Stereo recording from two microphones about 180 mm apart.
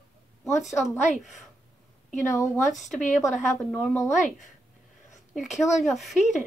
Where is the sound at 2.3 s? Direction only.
15° left (ahead or behind).